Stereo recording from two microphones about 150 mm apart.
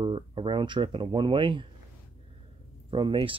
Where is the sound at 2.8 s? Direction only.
35° right (ahead or behind).